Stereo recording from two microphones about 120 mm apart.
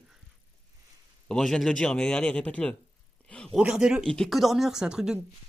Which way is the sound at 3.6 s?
5° right (ahead or behind).